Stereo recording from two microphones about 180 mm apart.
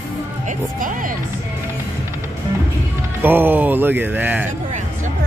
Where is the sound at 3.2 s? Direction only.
10° right (ahead or behind).